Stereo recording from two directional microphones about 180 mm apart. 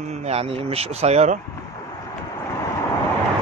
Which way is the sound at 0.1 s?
35° right (ahead or behind).